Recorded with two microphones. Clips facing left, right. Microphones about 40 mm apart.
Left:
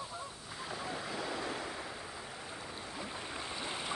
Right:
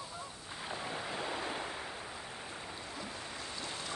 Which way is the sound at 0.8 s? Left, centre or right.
Right.